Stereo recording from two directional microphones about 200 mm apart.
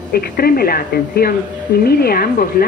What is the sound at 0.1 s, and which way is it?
Speech, 50° left (ahead or behind).